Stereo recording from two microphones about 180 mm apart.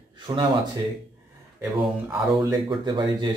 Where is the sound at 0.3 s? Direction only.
25° right (ahead or behind).